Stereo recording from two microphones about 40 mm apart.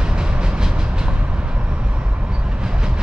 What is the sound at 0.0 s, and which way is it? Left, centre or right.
Train, right.